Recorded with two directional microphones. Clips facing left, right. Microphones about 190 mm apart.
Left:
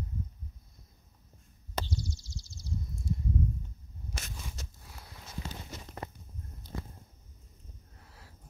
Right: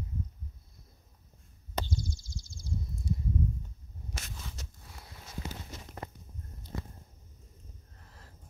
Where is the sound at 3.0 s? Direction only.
Centre (ahead or behind).